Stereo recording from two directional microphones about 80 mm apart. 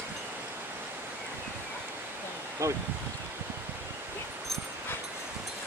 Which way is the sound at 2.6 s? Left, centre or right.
Right.